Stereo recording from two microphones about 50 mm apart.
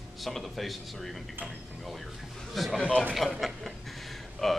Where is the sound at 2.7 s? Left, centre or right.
Centre.